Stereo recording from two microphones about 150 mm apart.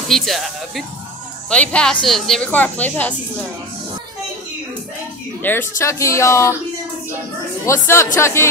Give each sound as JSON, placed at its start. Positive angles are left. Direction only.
{"t": 0.1, "sound": "speech", "side_deg": 0}
{"t": 5.4, "sound": "speech", "side_deg": 15}
{"t": 7.6, "sound": "speech", "side_deg": 15}